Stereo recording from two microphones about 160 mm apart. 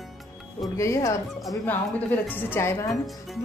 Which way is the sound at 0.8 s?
20° left (ahead or behind).